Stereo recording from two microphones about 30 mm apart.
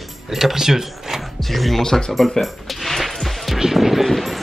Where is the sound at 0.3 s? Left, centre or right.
Centre.